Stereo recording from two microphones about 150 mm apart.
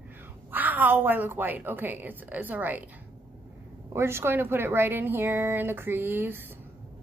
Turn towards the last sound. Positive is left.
turn(degrees=-15)  # may be behind; listen again after turning